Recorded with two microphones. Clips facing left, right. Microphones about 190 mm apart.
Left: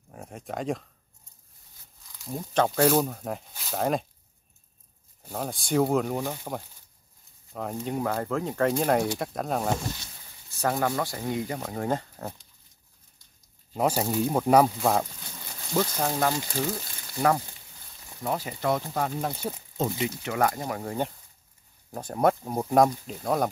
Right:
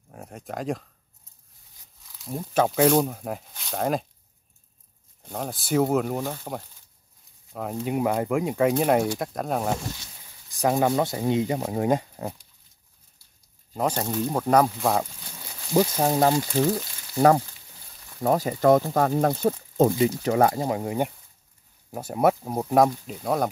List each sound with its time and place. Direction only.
0.1 s speech: centre (ahead or behind)
2.1 s speech: centre (ahead or behind)
5.2 s speech: centre (ahead or behind)
7.9 s speech: 15° right (ahead or behind)
10.5 s speech: 15° right (ahead or behind)
13.7 s speech: 5° left (ahead or behind)
15.7 s speech: 20° right (ahead or behind)
16.1 s speech: 35° right (ahead or behind)
18.2 s speech: 45° right (ahead or behind)
20.2 s speech: 30° right (ahead or behind); by 23.5 s centre (ahead or behind)